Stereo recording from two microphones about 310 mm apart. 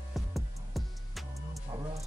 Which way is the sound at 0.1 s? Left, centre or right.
Centre.